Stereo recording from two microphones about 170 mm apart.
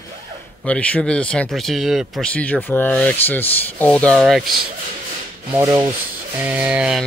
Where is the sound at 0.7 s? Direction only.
5° left (ahead or behind).